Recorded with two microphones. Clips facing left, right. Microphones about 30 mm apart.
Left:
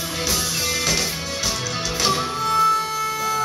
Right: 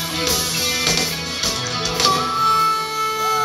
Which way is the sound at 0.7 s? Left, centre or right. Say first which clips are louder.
Right 3 dB; right.